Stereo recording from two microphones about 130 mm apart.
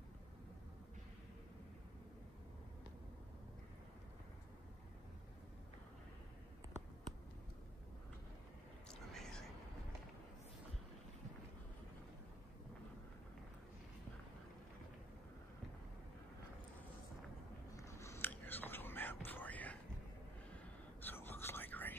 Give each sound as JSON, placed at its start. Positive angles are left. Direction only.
{"t": 8.8, "sound": "whispering", "side_deg": 5}
{"t": 17.7, "sound": "whispering", "side_deg": 20}
{"t": 21.0, "sound": "whispering", "side_deg": 15}